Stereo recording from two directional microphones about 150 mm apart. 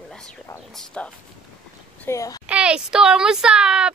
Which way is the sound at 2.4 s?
5° right (ahead or behind).